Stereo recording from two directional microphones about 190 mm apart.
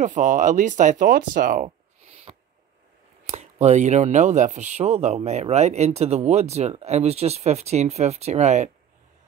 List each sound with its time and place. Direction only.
0.0 s speech: 40° right (ahead or behind)
2.3 s owl: 30° right (ahead or behind)
3.3 s speech: 35° right (ahead or behind)